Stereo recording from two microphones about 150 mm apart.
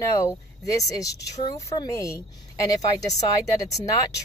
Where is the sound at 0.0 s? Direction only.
20° left (ahead or behind).